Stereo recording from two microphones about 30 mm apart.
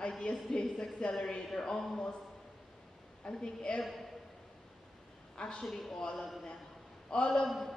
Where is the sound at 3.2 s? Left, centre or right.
Left.